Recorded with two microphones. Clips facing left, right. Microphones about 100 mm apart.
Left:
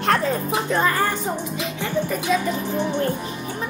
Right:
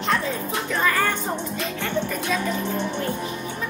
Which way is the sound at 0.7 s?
30° left (ahead or behind).